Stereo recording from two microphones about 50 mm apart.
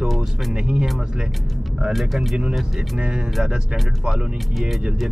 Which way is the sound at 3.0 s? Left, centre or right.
Centre.